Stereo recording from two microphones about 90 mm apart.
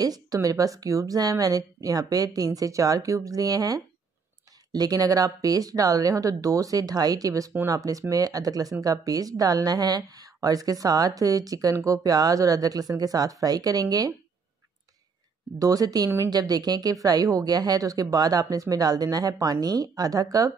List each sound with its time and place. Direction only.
0.0 s a woman's voice: 45° right (ahead or behind)
15.6 s a woman's voice: 40° right (ahead or behind)